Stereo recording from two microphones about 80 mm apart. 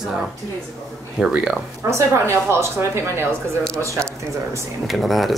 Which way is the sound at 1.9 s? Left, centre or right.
Right.